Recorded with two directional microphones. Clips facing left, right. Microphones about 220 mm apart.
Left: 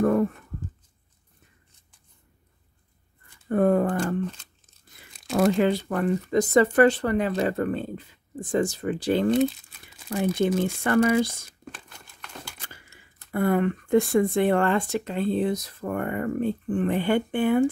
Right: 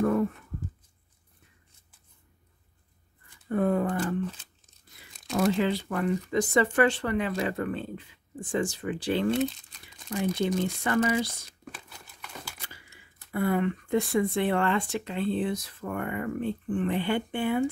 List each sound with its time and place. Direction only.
0.0 s a sound: 50° left (ahead or behind)
3.4 s speech: 50° left (ahead or behind)
5.4 s speech: 50° left (ahead or behind)
9.4 s crumpling: 5° left (ahead or behind)
10.3 s speech: 50° left (ahead or behind)
11.7 s crumpling: 5° right (ahead or behind)
13.3 s speech: 50° left (ahead or behind)